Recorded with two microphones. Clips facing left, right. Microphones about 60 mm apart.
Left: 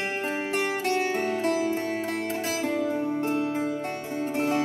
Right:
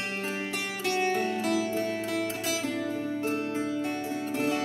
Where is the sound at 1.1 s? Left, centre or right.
Left.